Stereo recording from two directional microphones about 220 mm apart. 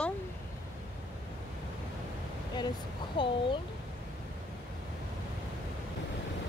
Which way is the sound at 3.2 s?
20° left (ahead or behind).